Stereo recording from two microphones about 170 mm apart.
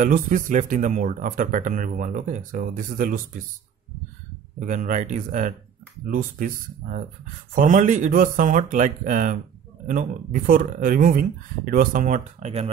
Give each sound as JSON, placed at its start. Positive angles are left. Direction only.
{"t": 0.0, "sound": "speech", "side_deg": -50}
{"t": 4.6, "sound": "speech", "side_deg": -50}